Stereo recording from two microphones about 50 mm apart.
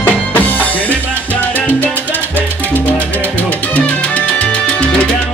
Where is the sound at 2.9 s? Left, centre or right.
Left.